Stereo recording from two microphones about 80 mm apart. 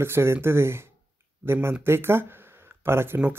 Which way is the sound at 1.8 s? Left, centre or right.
Right.